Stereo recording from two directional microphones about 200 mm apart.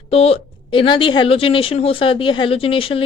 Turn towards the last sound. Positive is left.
turn(degrees=25)  # may be behind; listen again after turning